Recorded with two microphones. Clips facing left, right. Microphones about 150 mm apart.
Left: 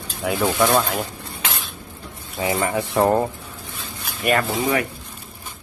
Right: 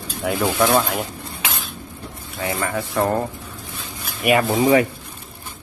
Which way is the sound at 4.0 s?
5° right (ahead or behind).